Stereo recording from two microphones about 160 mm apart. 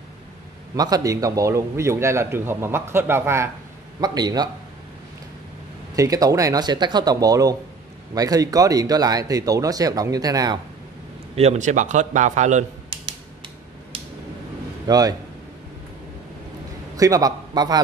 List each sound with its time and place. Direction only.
0.7 s a man's voice: 25° right (ahead or behind)
5.9 s speech: 20° right (ahead or behind)
11.3 s a man's voice: 45° right (ahead or behind)
14.9 s speech: 25° right (ahead or behind)
16.9 s a man's voice: 20° right (ahead or behind)